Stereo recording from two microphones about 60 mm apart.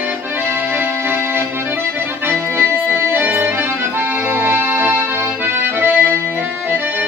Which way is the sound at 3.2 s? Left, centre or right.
Right.